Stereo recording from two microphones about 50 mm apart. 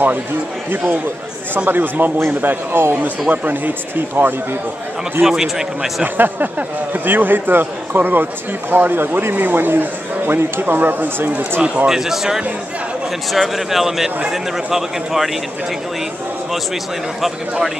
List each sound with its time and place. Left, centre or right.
1.7 s speech: right
2.1 s a man's voice: right
5.2 s a man's voice: centre
6.1 s a man's voice: right
11.6 s speech: right
11.9 s a man's voice: centre